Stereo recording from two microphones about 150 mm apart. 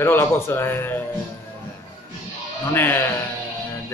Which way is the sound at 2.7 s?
15° left (ahead or behind).